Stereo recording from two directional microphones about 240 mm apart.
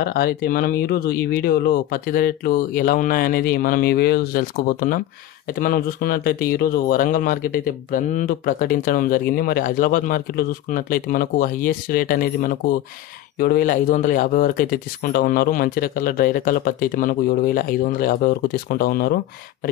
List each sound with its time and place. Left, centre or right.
0.0 s speech: left